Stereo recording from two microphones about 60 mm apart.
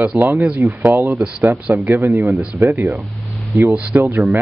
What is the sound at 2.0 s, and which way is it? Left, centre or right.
Speech, right.